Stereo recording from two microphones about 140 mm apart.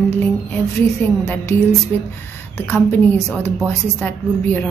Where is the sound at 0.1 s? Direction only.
15° left (ahead or behind).